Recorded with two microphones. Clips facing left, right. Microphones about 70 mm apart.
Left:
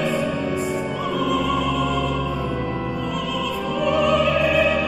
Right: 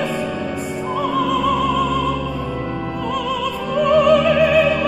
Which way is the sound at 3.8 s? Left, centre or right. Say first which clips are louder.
Right 6 dB; right.